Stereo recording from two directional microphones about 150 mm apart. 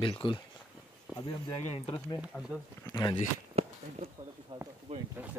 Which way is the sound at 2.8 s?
25° left (ahead or behind).